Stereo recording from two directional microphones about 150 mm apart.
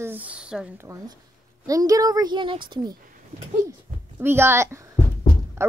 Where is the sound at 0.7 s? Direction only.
20° right (ahead or behind).